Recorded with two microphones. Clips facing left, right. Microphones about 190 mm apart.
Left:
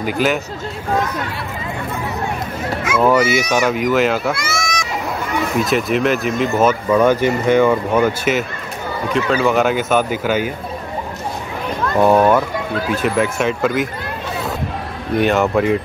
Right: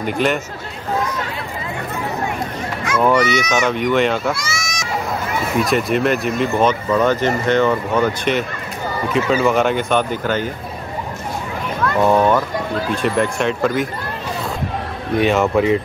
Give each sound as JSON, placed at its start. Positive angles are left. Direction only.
{"t": 0.0, "sound": "speech", "side_deg": 5}
{"t": 2.8, "sound": "speech", "side_deg": 5}
{"t": 4.4, "sound": "a sound", "side_deg": 55}
{"t": 5.6, "sound": "speech", "side_deg": 0}
{"t": 11.8, "sound": "speech", "side_deg": 10}
{"t": 15.1, "sound": "speech", "side_deg": 0}